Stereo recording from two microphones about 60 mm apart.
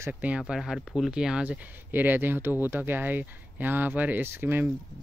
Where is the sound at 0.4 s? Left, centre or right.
Centre.